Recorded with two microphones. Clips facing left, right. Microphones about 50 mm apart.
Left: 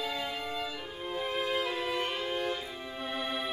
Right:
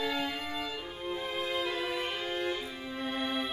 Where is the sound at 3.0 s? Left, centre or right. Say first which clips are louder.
Right 1 dB; centre.